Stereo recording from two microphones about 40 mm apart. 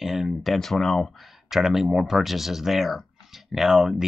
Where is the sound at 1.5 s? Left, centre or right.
Centre.